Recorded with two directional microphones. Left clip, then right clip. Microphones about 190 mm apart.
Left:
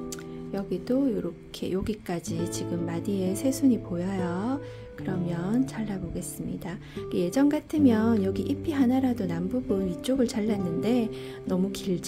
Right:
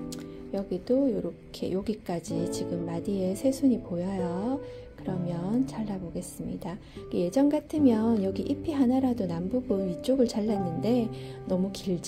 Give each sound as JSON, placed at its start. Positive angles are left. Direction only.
{"t": 0.5, "sound": "a woman's voice", "side_deg": 15}